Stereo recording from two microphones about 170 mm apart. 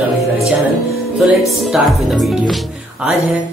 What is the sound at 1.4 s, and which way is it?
Speech, centre (ahead or behind).